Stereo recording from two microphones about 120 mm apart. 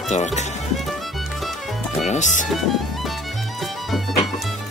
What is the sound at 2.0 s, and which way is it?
Music, 80° left.